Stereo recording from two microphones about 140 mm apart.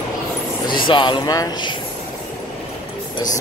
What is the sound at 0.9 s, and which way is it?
Speech, 35° left (ahead or behind).